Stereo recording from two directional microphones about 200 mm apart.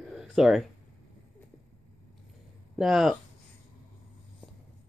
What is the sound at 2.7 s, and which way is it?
Speech, centre (ahead or behind).